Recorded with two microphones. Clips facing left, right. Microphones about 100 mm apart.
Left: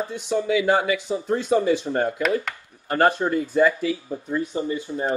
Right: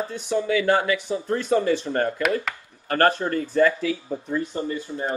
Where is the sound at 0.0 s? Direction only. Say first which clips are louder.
Even; 15° left (ahead or behind).